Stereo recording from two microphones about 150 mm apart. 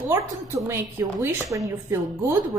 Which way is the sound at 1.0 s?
15° right (ahead or behind).